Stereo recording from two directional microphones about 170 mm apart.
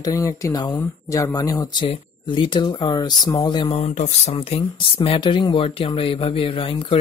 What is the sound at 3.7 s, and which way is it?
Speech, 40° left (ahead or behind).